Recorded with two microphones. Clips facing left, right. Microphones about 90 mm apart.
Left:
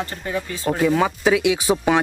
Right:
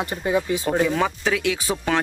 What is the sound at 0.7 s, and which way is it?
Speech, centre (ahead or behind).